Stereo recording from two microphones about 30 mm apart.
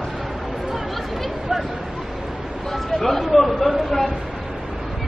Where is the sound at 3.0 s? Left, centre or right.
Centre.